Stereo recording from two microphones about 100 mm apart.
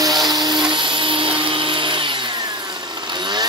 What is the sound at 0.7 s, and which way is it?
Printer, 55° right (ahead or behind).